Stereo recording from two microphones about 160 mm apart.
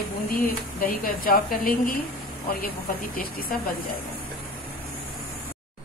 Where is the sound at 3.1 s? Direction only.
65° left (ahead or behind).